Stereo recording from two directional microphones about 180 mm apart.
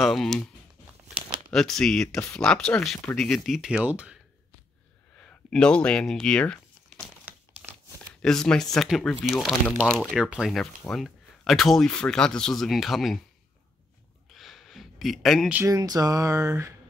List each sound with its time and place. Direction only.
0.0 s speech: centre (ahead or behind)
1.5 s speech: centre (ahead or behind)
5.2 s speech: 5° left (ahead or behind)
8.2 s speech: 5° left (ahead or behind)
14.3 s a sound: centre (ahead or behind)
15.6 s speech: 20° right (ahead or behind)